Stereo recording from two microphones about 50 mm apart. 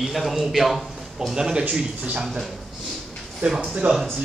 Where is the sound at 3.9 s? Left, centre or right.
Centre.